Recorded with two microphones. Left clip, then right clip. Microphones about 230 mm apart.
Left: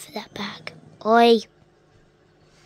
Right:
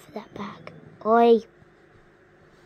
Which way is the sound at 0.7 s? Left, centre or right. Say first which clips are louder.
Left 2 dB; centre.